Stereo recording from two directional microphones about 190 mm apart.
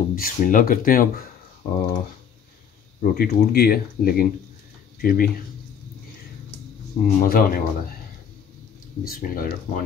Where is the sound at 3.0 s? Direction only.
55° left (ahead or behind).